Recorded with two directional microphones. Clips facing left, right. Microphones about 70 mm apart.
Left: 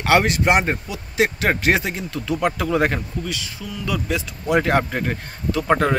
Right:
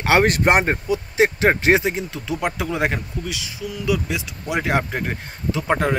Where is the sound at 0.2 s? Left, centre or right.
Right.